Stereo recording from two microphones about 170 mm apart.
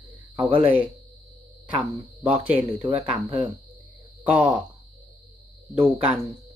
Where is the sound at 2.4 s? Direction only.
10° right (ahead or behind).